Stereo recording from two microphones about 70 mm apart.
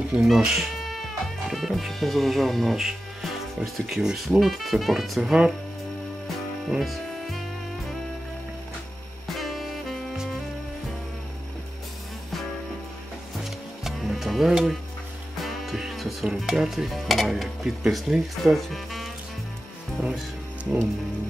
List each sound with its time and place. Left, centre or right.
0.1 s music: centre
3.8 s speech: centre
6.7 s music: centre
9.4 s saxophone: centre
13.4 s music: centre
16.3 s speech: centre
20.0 s speech: centre